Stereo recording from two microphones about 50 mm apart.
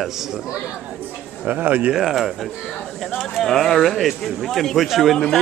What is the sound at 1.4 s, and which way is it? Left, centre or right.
Speech, right.